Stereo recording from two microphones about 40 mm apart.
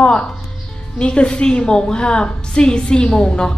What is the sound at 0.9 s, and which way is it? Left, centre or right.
A woman's voice, left.